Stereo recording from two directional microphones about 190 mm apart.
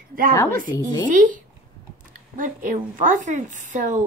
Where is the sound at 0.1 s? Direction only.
50° right (ahead or behind).